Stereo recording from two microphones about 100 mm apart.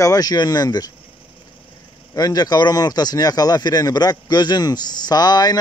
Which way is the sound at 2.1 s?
40° left (ahead or behind).